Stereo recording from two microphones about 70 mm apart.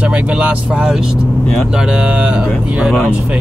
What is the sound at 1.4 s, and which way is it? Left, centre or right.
Speech, centre.